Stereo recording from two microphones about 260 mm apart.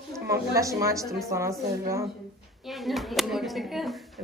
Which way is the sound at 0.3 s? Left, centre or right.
Centre.